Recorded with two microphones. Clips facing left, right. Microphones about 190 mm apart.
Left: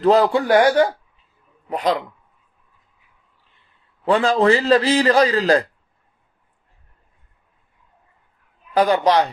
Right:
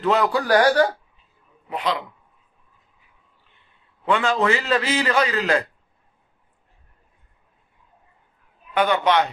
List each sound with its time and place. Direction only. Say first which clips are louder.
0.0 s speech: left 5 dB; 35° left (ahead or behind)
1.7 s a man's voice: left 5 dB; 40° left (ahead or behind)
4.0 s a man's voice: left 4 dB; 35° left (ahead or behind)
8.7 s a man's voice: left 3 dB; 35° left (ahead or behind)